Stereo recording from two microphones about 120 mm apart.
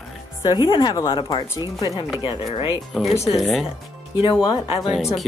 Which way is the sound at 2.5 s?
45° left (ahead or behind).